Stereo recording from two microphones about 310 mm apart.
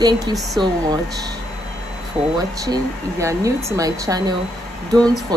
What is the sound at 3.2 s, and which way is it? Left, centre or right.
Speech, centre.